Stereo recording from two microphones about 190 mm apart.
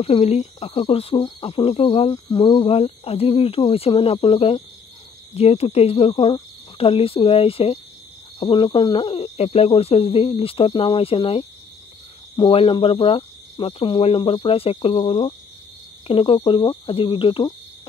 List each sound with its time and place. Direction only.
0.0 s speech: 30° left (ahead or behind)